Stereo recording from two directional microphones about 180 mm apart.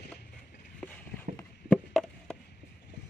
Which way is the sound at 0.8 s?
10° left (ahead or behind).